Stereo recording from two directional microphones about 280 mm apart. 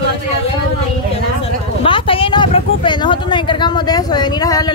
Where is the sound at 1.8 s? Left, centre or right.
Centre.